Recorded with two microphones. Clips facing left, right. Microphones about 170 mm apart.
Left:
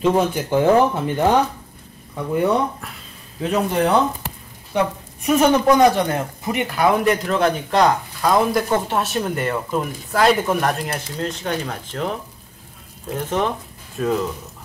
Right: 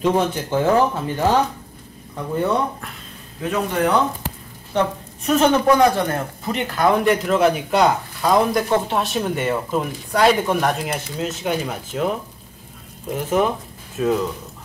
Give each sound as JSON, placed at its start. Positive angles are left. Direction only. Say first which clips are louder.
{"t": 0.0, "sound": "speech", "louder": "left 1 dB", "side_deg": 0}
{"t": 0.5, "sound": "speech", "louder": "left 3 dB", "side_deg": 15}
{"t": 4.7, "sound": "speech", "louder": "even", "side_deg": 10}